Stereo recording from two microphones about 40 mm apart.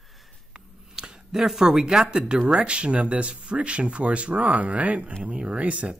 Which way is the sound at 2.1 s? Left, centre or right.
Centre.